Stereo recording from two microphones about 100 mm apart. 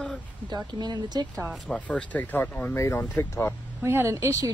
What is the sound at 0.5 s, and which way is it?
Speech, 45° right (ahead or behind).